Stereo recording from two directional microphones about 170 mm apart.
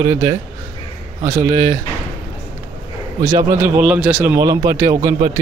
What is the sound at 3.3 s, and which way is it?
Speech, 15° right (ahead or behind).